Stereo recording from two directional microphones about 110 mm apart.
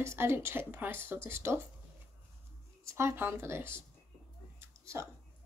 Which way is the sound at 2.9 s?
20° right (ahead or behind).